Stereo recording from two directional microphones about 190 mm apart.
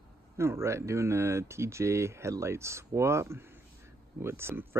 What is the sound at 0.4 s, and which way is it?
Speech, 15° right (ahead or behind).